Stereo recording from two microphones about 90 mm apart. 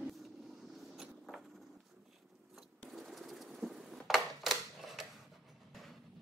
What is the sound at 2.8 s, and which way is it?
Typewriter, centre (ahead or behind).